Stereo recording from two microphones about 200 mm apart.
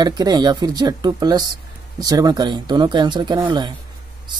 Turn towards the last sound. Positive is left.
turn(degrees=-25)  # may be behind; listen again after turning